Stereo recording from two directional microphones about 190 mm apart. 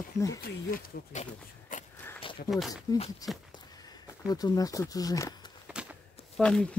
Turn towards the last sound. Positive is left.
turn(degrees=5)  # may be behind; listen again after turning